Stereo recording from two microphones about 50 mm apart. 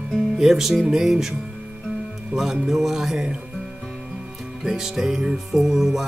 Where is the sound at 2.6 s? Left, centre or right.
Centre.